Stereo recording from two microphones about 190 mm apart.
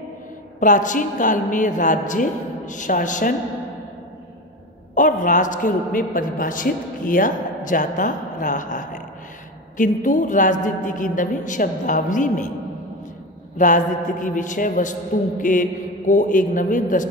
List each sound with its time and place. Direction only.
0.6 s a man's voice: 45° left (ahead or behind)
4.9 s a man's voice: 45° left (ahead or behind)
13.6 s a man's voice: 45° left (ahead or behind)